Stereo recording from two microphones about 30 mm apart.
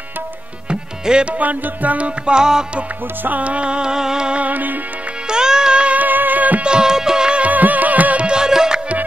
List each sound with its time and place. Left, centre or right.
0.7 s music: right
1.4 s music: right
2.2 s music: right
3.3 s music: right
3.9 s music: right
4.4 s music: right
5.3 s music: right
5.9 s music: right
6.6 s music: right
7.5 s music: right
8.2 s music: right
8.5 s music: right